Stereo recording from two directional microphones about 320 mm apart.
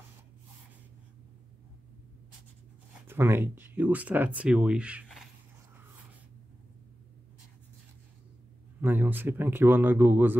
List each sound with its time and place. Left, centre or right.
3.1 s speech: centre
8.8 s a man's voice: centre